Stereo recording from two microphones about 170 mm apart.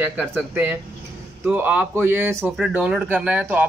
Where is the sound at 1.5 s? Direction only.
10° right (ahead or behind).